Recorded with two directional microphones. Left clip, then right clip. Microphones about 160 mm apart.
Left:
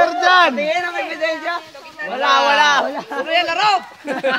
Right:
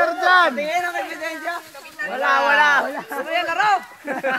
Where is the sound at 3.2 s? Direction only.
10° right (ahead or behind).